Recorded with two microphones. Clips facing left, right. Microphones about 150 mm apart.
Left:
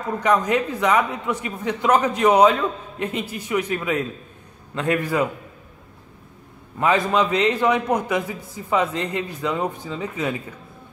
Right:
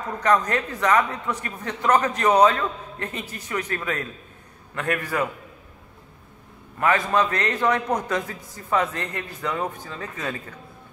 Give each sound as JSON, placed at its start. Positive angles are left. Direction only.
{"t": 0.2, "sound": "a man's voice", "side_deg": 10}
{"t": 6.8, "sound": "a man's voice", "side_deg": 15}